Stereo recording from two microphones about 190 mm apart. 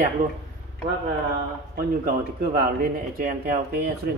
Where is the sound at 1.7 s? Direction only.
50° right (ahead or behind).